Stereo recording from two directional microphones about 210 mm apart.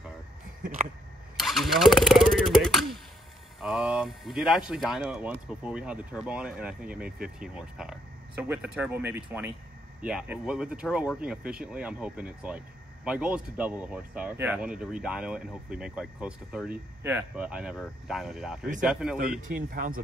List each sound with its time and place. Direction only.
1.4 s a sound: centre (ahead or behind)
3.6 s speech: centre (ahead or behind)
19.7 s speech: 45° right (ahead or behind)